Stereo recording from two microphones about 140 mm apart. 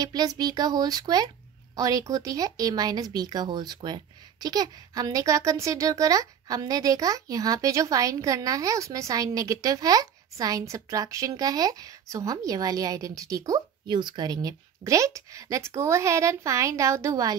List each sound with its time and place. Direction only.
0.0 s speech: 25° right (ahead or behind)